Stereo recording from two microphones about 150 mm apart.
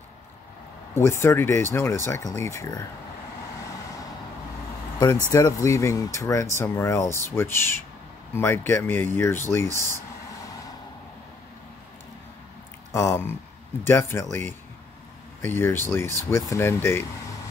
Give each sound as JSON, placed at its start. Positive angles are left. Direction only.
{"t": 0.9, "sound": "speech", "side_deg": 20}
{"t": 4.9, "sound": "speech", "side_deg": 25}
{"t": 12.9, "sound": "speech", "side_deg": 20}
{"t": 15.4, "sound": "speech", "side_deg": 15}